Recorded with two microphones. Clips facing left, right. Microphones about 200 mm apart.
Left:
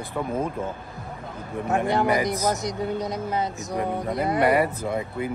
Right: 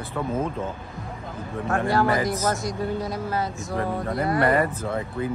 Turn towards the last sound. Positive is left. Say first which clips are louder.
# even
turn(degrees=15)  # may be behind; listen again after turning